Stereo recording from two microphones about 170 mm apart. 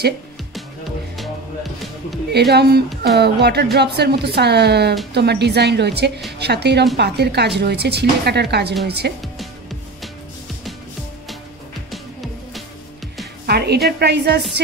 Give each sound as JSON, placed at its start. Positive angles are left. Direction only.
{"t": 1.1, "sound": "music", "side_deg": 0}
{"t": 2.3, "sound": "a woman's voice", "side_deg": -75}
{"t": 11.9, "sound": "music", "side_deg": 0}
{"t": 13.5, "sound": "a woman's voice", "side_deg": -70}